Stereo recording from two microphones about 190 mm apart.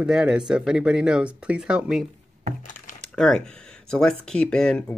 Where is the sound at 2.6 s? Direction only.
40° left (ahead or behind).